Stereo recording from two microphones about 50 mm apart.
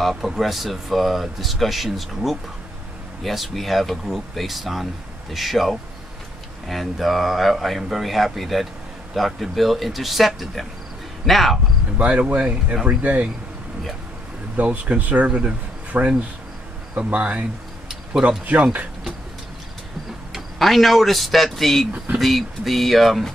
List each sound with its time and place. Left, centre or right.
0.0 s speech: centre
12.0 s speech: right
14.6 s speech: right
18.5 s speech: right
20.3 s speech: centre